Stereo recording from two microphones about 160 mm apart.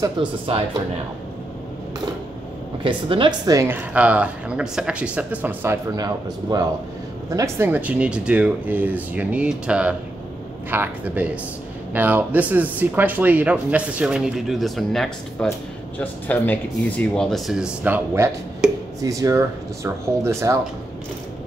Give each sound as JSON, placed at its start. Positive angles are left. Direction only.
{"t": 0.2, "sound": "speech", "side_deg": -35}
{"t": 2.8, "sound": "speech", "side_deg": -30}
{"t": 18.6, "sound": "a sound", "side_deg": -5}
{"t": 18.9, "sound": "speech", "side_deg": -20}